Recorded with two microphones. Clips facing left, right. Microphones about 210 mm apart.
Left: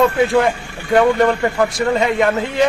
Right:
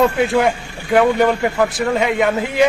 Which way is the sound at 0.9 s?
5° right (ahead or behind).